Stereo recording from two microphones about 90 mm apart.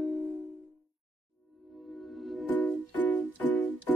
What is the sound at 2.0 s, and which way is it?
Music, centre (ahead or behind).